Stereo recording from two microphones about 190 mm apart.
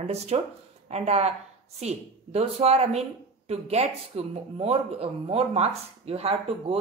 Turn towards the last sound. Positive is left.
turn(degrees=-30)  # may be behind; listen again after turning